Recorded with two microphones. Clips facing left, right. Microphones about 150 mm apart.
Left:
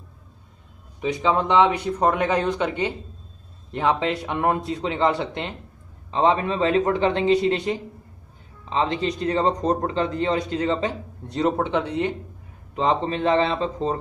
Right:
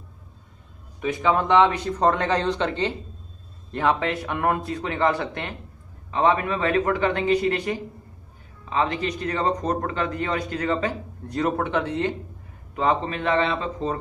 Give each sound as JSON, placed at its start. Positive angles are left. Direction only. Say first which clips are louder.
{"t": 1.0, "sound": "speech", "louder": "even", "side_deg": 20}